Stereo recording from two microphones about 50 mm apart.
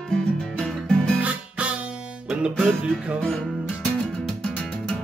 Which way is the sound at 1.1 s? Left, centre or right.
Right.